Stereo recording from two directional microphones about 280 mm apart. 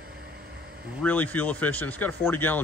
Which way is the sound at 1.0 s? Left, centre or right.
Centre.